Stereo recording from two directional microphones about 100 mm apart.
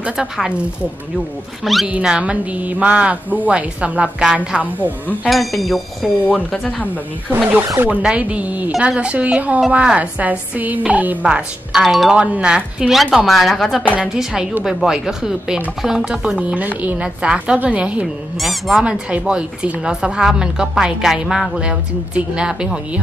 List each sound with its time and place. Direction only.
0.0 s speech: 10° right (ahead or behind)
1.6 s speech: centre (ahead or behind)
1.9 s speech: 10° right (ahead or behind)
5.3 s speech: centre (ahead or behind)
7.4 s speech: 20° right (ahead or behind)
18.0 s speech: centre (ahead or behind)